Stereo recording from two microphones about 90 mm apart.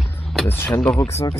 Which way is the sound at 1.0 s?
35° left (ahead or behind).